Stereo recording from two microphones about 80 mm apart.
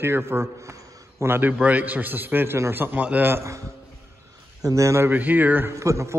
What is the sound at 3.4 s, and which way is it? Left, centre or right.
Speech, right.